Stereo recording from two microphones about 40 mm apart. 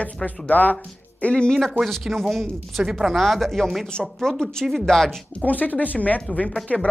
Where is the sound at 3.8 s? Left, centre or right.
Centre.